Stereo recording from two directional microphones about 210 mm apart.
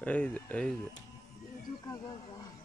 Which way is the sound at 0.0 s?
5° left (ahead or behind).